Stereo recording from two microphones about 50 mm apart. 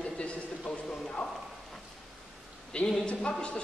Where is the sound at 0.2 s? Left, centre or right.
Left.